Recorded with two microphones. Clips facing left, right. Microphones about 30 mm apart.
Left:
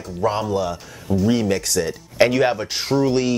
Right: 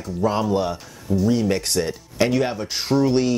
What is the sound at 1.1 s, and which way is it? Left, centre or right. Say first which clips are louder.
Speech: left 1 dB; left.